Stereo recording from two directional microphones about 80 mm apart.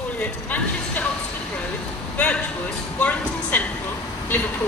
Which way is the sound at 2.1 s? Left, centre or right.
Centre.